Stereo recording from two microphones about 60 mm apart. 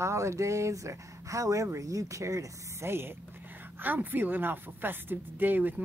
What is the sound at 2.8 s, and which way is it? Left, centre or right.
Speech, right.